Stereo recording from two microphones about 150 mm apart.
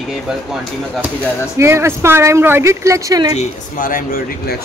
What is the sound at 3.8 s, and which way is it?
Speech, 70° left (ahead or behind).